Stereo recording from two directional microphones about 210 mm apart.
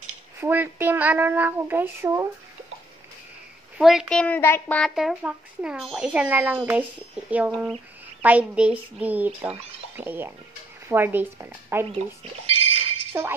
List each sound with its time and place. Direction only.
0.4 s child singing: 10° right (ahead or behind)
3.7 s speech: 5° right (ahead or behind)
8.2 s child singing: 5° right (ahead or behind)
12.4 s music: 30° right (ahead or behind)
13.1 s child singing: 10° right (ahead or behind)